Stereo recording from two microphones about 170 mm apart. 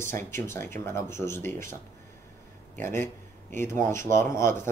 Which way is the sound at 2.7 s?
15° left (ahead or behind).